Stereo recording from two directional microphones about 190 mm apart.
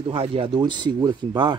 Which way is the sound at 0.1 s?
30° right (ahead or behind).